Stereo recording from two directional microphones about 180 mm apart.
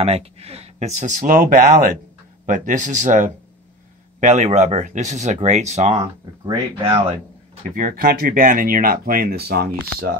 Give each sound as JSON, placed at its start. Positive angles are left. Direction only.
{"t": 0.0, "sound": "speech", "side_deg": -35}
{"t": 6.4, "sound": "speech", "side_deg": -25}
{"t": 7.7, "sound": "speech", "side_deg": -50}